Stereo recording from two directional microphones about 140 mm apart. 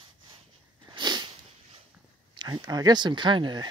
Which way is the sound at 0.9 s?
30° right (ahead or behind).